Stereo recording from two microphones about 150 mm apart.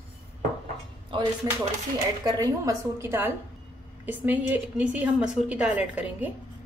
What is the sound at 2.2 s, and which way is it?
A woman's voice, 20° right (ahead or behind).